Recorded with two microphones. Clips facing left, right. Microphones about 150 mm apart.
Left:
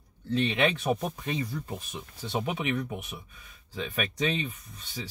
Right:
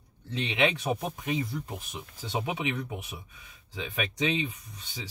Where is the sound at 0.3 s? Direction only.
15° right (ahead or behind).